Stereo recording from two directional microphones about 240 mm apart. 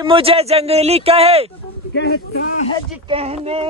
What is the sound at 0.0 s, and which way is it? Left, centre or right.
Speech, right.